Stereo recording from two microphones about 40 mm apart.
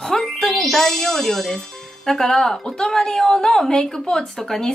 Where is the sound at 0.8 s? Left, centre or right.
Centre.